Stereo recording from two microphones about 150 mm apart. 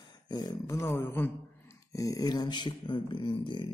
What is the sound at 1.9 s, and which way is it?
Speech, 25° left (ahead or behind).